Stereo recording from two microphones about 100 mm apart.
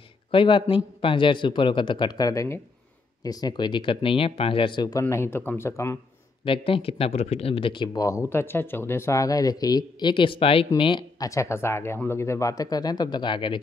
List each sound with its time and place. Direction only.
0.3 s speech: 55° left (ahead or behind); by 2.6 s 30° left (ahead or behind)
3.3 s speech: 40° left (ahead or behind)
5.1 s speech: 25° left (ahead or behind)
6.4 s speech: 60° left (ahead or behind)
8.0 s speech: 30° left (ahead or behind); by 10.7 s 65° left (ahead or behind)
10.8 s speech: 55° left (ahead or behind)
11.1 s speech: 30° left (ahead or behind); by 13.6 s 55° left (ahead or behind)